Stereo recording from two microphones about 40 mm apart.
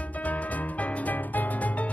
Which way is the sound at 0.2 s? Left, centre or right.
Left.